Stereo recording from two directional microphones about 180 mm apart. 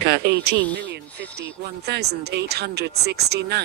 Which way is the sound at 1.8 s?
65° right (ahead or behind).